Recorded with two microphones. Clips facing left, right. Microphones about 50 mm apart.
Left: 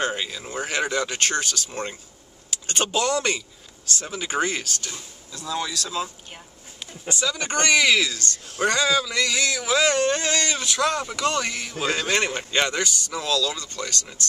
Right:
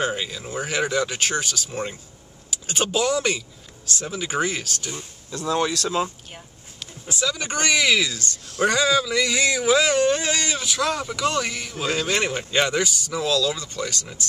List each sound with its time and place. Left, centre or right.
0.0 s speech: centre
5.3 s speech: right
7.1 s a man's voice: centre